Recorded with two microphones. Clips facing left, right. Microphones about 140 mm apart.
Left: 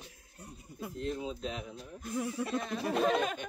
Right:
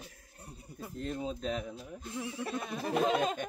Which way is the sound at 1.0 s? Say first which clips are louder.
Even; 45° right (ahead or behind).